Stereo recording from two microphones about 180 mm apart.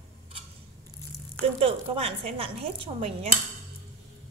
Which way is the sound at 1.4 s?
30° right (ahead or behind).